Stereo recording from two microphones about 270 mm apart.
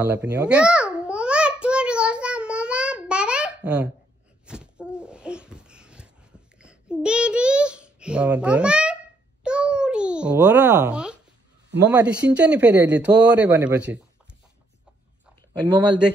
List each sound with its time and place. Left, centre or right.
0.0 s babbling: centre
4.5 s a sound: centre
11.9 s speech: centre
15.6 s speech: centre